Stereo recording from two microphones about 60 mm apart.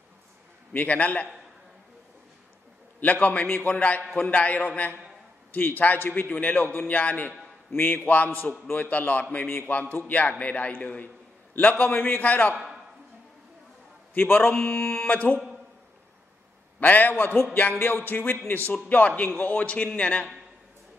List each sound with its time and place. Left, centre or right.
0.7 s a man's voice: left
3.0 s a man's voice: left
7.7 s a man's voice: left
12.5 s a sound: centre
14.1 s speech: left
16.8 s a man's voice: left